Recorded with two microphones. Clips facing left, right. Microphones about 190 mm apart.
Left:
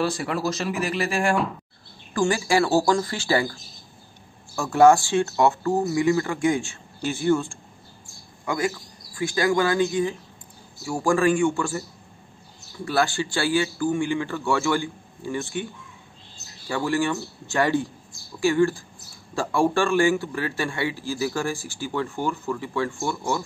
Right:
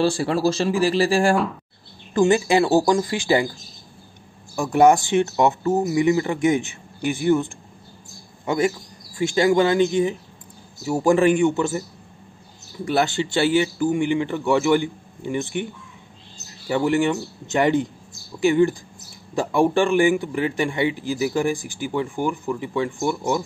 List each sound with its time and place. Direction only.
0.0 s speech: 30° right (ahead or behind)
2.1 s speech: 20° right (ahead or behind)
4.6 s speech: 20° right (ahead or behind)
12.8 s speech: 20° right (ahead or behind)
16.6 s a man's voice: 20° right (ahead or behind)